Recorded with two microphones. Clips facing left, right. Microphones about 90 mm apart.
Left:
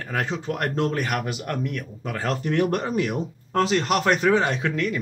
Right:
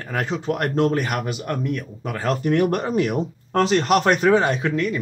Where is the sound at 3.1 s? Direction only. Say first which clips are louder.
Right 3 dB; 60° right (ahead or behind).